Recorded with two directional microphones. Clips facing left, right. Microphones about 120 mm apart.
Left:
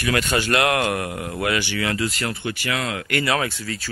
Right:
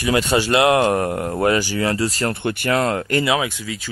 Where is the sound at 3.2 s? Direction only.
15° right (ahead or behind).